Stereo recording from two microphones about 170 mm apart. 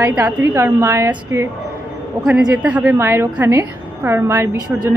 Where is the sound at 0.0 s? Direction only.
10° right (ahead or behind).